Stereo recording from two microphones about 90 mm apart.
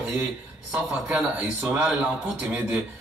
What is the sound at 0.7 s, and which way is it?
Speech, 15° right (ahead or behind).